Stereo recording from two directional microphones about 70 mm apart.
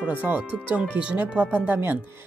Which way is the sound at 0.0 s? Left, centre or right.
Right.